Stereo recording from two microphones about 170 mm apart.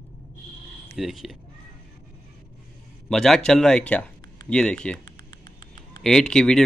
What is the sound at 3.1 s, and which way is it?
Speech, 5° left (ahead or behind).